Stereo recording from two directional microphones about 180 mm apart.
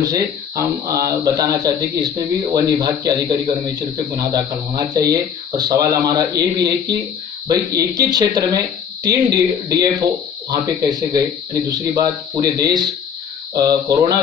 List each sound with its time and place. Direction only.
0.0 s speech: 20° right (ahead or behind)